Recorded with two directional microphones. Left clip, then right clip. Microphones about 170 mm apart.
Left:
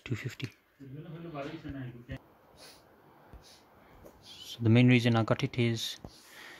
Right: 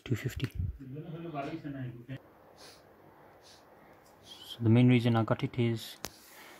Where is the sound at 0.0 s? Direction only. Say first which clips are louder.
Right 2 dB; 10° right (ahead or behind).